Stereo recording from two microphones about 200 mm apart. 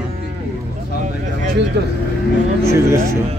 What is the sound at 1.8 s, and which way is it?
Speech, 60° right (ahead or behind).